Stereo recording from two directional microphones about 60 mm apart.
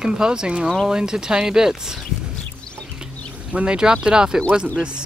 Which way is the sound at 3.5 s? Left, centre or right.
Centre.